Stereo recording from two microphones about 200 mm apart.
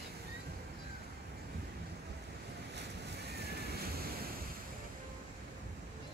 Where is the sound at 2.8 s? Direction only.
55° right (ahead or behind).